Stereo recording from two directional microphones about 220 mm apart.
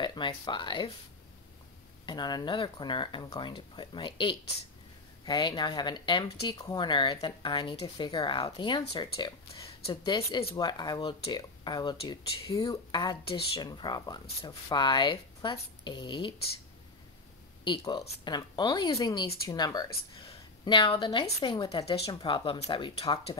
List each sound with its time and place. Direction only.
0.0 s speech: 20° left (ahead or behind)
2.0 s speech: 20° left (ahead or behind)
17.6 s speech: 20° left (ahead or behind)